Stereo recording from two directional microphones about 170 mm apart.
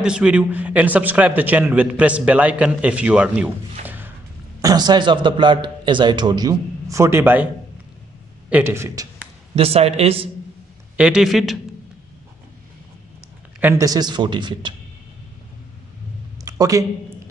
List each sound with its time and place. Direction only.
0.0 s a man's voice: 5° right (ahead or behind)
3.8 s a sound: 10° right (ahead or behind)
4.6 s a man's voice: 20° right (ahead or behind)
8.5 s a man's voice: 10° right (ahead or behind)
9.6 s speech: 35° right (ahead or behind)
11.0 s a man's voice: 5° right (ahead or behind)
13.6 s a man's voice: 10° right (ahead or behind)
13.8 s a man's voice: 25° right (ahead or behind)
16.4 s a sound: 20° right (ahead or behind)